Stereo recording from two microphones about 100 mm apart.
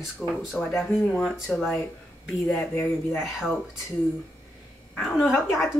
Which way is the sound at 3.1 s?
Centre (ahead or behind).